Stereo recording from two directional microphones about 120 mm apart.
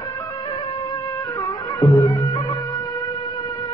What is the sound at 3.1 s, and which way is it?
Music, 50° left (ahead or behind).